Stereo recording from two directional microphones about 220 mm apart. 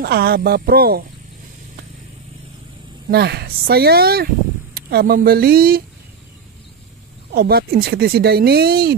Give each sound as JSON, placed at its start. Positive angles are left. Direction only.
{"t": 0.0, "sound": "speech", "side_deg": -45}
{"t": 3.1, "sound": "speech", "side_deg": -45}
{"t": 7.3, "sound": "speech", "side_deg": -45}